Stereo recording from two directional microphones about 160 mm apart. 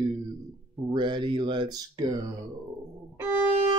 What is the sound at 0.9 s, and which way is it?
Speech, 30° right (ahead or behind).